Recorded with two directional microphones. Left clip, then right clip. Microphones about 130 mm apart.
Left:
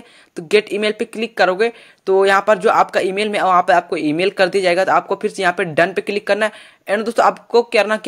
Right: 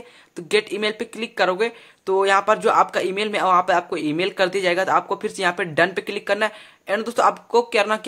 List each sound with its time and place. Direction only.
0.5 s speech: 25° left (ahead or behind)